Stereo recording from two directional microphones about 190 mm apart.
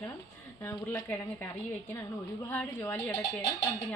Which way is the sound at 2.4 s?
10° left (ahead or behind).